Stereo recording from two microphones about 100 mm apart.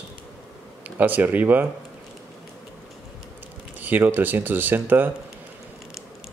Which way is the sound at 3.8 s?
20° right (ahead or behind).